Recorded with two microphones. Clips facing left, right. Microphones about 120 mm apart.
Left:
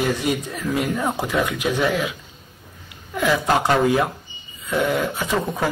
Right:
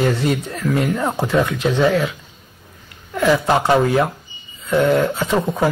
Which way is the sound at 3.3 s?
20° right (ahead or behind).